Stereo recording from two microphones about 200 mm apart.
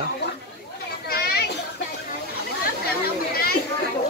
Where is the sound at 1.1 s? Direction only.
50° left (ahead or behind).